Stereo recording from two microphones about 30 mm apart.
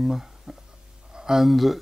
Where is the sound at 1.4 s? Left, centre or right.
Centre.